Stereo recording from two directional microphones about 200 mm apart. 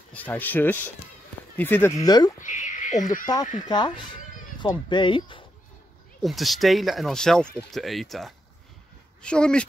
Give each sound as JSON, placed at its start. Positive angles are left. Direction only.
{"t": 0.1, "sound": "speech", "side_deg": 10}
{"t": 2.4, "sound": "a sound", "side_deg": 40}
{"t": 3.6, "sound": "speech", "side_deg": 20}
{"t": 6.2, "sound": "speech", "side_deg": 0}